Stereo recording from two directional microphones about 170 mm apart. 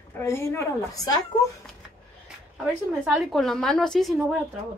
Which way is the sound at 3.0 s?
Centre (ahead or behind).